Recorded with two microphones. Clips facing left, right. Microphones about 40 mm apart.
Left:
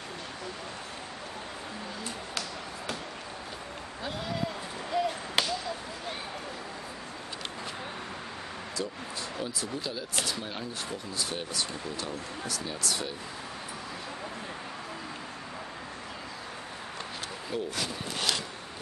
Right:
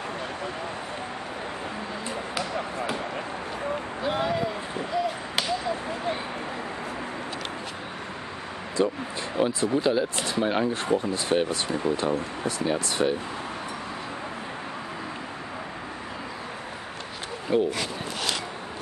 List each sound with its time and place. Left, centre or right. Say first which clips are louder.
4.9 s a sound: right 2 dB; centre
8.8 s speech: right 12 dB; right
9.4 s speech: right 14 dB; right
17.5 s speech: right 10 dB; right